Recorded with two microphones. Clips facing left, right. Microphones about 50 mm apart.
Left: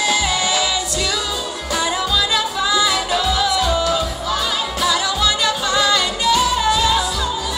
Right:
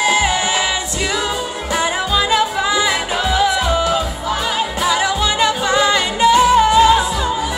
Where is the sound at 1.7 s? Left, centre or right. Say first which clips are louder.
Right 2 dB; right.